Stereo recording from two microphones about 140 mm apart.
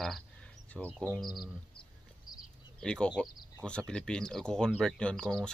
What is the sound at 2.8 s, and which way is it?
Speech, 5° left (ahead or behind).